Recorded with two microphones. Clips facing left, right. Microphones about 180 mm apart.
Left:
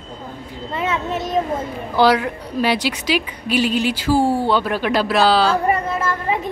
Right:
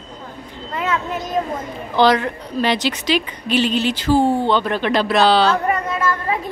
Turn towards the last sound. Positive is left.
turn(degrees=25)  # may be behind; listen again after turning